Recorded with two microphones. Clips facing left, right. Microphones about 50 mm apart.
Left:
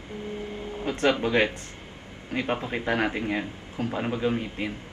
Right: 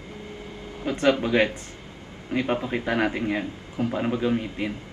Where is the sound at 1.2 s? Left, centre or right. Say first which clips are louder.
Right 1 dB; centre.